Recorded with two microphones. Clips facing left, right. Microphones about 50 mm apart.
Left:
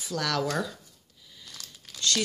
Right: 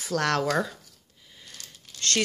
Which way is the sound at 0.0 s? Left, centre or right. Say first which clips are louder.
Right 4 dB; right.